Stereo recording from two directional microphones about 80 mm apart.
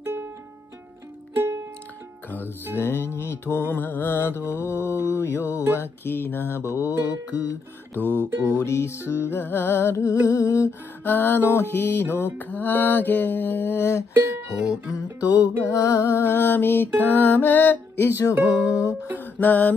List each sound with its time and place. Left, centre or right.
0.0 s music: right
1.4 s music: right
2.7 s mantra: left
4.4 s mantra: right
6.0 s mantra: left
6.6 s mantra: right
8.5 s music: left
11.1 s mantra: left
14.1 s speech: right
14.7 s mantra: centre
16.3 s mantra: left
18.3 s mantra: right
19.3 s mantra: left